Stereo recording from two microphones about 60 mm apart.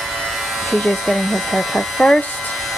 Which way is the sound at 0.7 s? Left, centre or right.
Centre.